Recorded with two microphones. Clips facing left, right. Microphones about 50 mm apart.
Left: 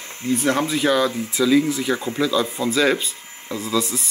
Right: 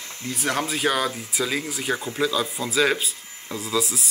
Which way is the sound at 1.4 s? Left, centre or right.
Right.